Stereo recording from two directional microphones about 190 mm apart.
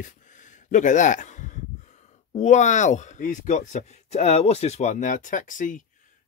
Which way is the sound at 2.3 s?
40° left (ahead or behind).